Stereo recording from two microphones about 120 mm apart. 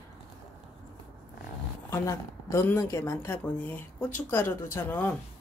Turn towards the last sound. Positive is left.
turn(degrees=20)  # may be behind; listen again after turning